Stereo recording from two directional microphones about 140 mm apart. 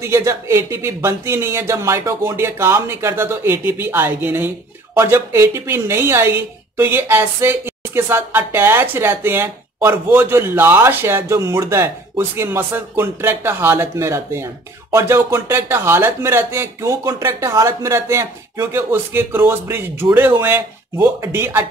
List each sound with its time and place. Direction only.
0.0 s speech: 20° right (ahead or behind)